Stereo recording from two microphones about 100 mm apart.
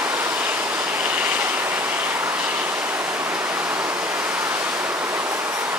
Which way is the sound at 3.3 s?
15° right (ahead or behind).